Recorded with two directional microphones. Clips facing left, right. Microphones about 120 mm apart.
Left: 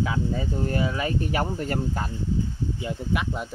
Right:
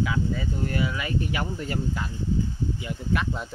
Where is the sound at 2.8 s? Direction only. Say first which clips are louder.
Left 1 dB; 20° left (ahead or behind).